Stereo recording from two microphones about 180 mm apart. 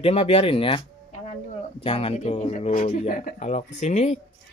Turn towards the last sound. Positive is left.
turn(degrees=40)  # may be behind; listen again after turning